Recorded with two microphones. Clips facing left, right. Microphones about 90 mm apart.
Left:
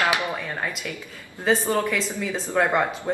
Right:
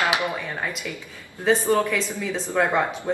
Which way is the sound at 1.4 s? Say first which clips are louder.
Right 2 dB; centre (ahead or behind).